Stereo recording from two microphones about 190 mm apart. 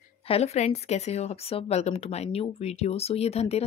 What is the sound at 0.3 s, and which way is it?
A woman's voice, 35° left (ahead or behind).